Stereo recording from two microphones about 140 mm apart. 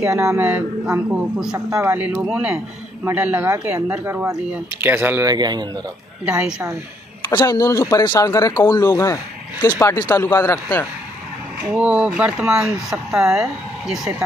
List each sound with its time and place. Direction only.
0.0 s speech: 20° right (ahead or behind)
1.7 s speech: 20° right (ahead or behind)
5.3 s speech: 30° right (ahead or behind)
6.2 s speech: 10° right (ahead or behind)
7.2 s speech: 20° left (ahead or behind)
11.7 s speech: 10° right (ahead or behind)